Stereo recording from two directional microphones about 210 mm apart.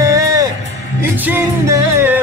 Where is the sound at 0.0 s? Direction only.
15° right (ahead or behind).